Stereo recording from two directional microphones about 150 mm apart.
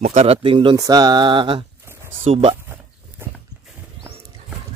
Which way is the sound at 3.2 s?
15° right (ahead or behind).